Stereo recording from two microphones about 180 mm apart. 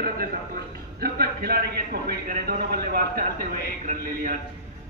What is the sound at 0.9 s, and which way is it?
A man's voice, 55° right (ahead or behind).